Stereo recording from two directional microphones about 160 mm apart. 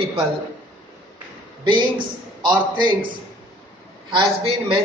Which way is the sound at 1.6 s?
30° right (ahead or behind).